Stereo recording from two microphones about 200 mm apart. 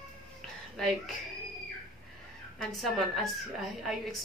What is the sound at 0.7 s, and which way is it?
Speech, centre (ahead or behind).